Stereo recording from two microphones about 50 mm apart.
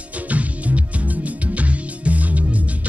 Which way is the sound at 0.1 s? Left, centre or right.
Right.